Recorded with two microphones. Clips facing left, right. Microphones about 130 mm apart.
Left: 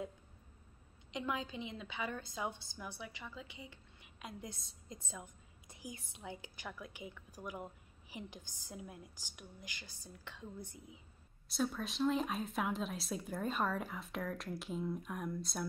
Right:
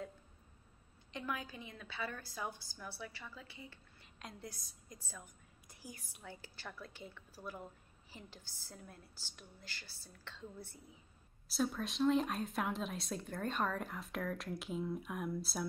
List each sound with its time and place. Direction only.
1.1 s a woman's voice: 20° left (ahead or behind)
11.4 s speech: centre (ahead or behind)